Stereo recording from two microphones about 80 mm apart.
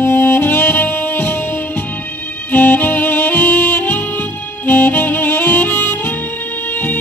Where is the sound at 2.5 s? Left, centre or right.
Left.